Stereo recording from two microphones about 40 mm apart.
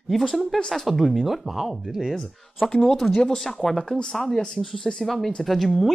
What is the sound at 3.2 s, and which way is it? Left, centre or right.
Speech, centre.